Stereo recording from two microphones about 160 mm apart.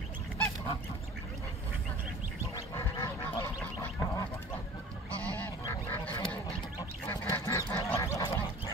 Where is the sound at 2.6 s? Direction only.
20° left (ahead or behind).